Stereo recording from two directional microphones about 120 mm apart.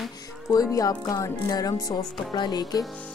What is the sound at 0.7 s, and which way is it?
Music, 30° left (ahead or behind).